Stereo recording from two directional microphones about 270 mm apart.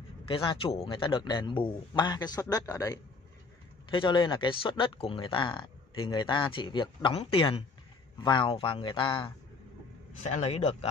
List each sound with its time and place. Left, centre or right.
0.3 s a man's voice: centre